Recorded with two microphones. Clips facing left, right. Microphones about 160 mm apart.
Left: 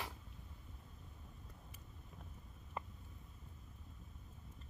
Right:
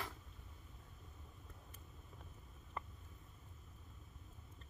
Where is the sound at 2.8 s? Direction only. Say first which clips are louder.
Left 2 dB; 15° left (ahead or behind).